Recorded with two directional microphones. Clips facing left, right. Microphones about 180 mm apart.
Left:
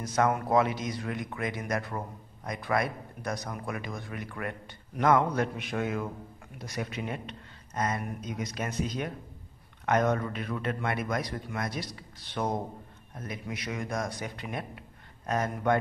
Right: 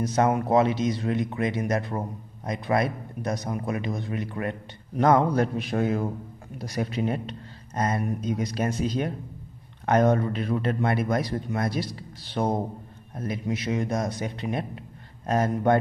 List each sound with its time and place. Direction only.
0.0 s a man's voice: 25° right (ahead or behind)